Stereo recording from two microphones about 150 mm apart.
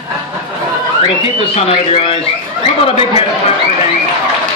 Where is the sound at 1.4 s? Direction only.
40° left (ahead or behind).